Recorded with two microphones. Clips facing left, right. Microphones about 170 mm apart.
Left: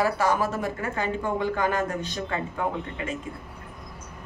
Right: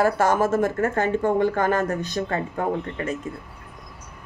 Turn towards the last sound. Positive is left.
turn(degrees=-40)  # may be behind; listen again after turning